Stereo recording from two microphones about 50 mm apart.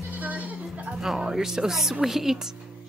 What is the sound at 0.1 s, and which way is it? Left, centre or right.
Bleat, right.